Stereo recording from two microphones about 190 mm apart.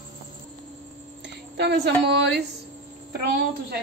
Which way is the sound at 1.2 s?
65° right (ahead or behind).